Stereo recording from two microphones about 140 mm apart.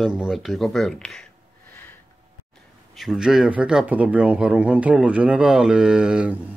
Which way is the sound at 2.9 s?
Centre (ahead or behind).